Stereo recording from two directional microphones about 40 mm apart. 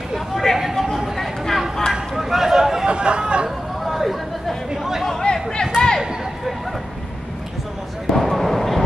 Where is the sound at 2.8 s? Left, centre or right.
Right.